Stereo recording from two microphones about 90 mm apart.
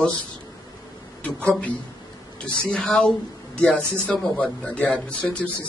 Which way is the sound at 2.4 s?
10° left (ahead or behind).